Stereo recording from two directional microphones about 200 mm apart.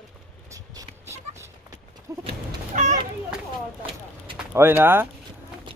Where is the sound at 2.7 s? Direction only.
35° right (ahead or behind).